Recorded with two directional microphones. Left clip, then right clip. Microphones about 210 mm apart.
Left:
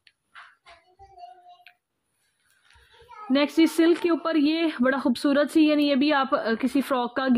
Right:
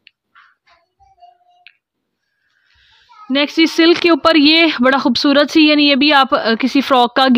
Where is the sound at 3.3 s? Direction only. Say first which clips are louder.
Right 7 dB; 30° right (ahead or behind).